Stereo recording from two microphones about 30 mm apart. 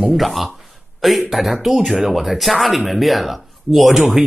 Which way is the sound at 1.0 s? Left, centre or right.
Centre.